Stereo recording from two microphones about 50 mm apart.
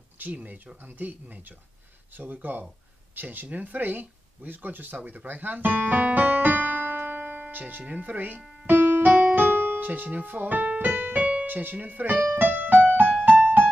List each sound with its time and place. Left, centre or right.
0.2 s speech: right
13.3 s music: right